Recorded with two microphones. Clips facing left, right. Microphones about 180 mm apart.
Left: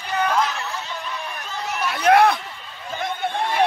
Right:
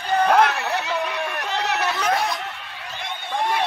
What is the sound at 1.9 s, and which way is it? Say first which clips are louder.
Chatter: left 7 dB; 60° left (ahead or behind).